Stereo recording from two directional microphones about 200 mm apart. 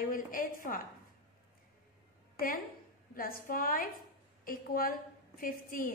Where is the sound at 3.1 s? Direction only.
45° left (ahead or behind).